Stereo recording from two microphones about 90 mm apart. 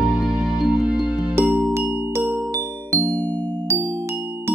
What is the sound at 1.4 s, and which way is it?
Music, 15° right (ahead or behind).